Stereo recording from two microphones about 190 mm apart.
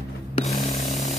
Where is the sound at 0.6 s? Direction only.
35° left (ahead or behind).